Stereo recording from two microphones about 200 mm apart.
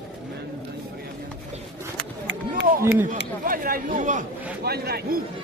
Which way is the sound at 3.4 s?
45° right (ahead or behind).